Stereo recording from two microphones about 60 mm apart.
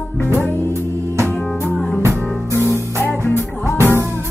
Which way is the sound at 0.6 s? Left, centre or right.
Right.